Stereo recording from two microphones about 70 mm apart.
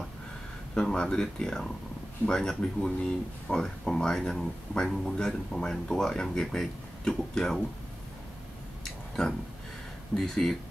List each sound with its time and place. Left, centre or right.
0.7 s speech: centre
10.1 s speech: centre